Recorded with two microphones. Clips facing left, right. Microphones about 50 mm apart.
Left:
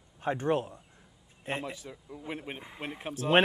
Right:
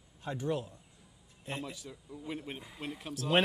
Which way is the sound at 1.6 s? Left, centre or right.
Centre.